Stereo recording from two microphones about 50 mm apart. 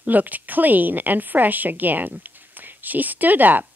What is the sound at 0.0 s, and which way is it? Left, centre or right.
Speech, right.